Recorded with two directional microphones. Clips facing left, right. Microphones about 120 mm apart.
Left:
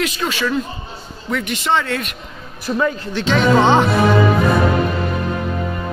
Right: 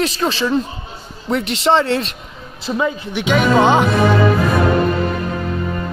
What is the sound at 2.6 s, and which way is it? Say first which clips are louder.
Speech: even; 15° right (ahead or behind).